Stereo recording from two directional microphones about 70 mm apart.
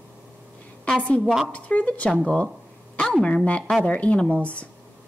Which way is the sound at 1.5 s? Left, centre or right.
Centre.